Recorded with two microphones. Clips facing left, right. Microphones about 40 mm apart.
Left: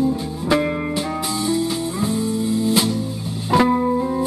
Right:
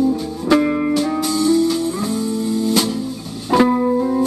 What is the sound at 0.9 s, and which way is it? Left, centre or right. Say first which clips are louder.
Music: right 5 dB; centre.